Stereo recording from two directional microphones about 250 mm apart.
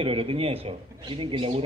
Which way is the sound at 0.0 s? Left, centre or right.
Right.